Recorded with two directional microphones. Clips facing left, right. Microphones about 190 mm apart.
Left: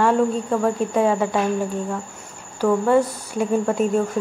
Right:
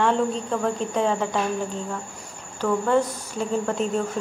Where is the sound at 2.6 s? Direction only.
10° left (ahead or behind).